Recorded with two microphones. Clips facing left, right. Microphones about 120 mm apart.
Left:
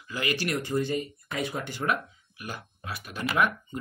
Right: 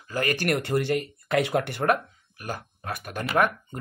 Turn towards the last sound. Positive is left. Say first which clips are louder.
# right 3 dB
turn(degrees=-50)  # may be behind; listen again after turning